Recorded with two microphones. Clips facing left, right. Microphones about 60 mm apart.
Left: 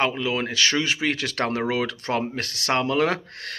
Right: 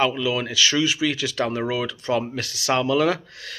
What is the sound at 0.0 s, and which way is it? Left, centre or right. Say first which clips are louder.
Speech: right 2 dB; left.